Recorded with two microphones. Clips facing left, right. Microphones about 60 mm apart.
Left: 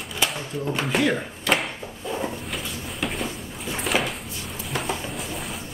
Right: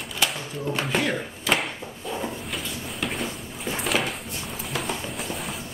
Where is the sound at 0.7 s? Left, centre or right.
Centre.